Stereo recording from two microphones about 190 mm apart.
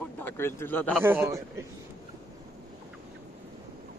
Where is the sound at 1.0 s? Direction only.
10° right (ahead or behind).